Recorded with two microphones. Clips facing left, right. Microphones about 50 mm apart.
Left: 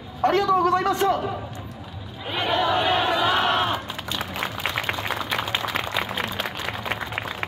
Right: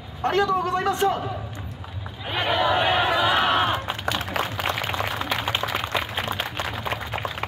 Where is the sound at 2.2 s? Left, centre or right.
Centre.